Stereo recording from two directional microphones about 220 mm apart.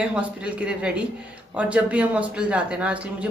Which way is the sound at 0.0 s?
5° right (ahead or behind).